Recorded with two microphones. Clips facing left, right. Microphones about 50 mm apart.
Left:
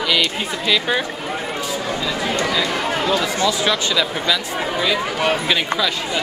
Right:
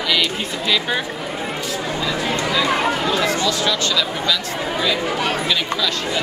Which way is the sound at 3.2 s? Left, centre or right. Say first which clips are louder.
Even; centre.